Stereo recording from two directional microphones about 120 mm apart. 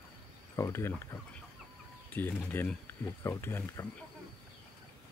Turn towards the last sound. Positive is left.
turn(degrees=20)  # may be behind; listen again after turning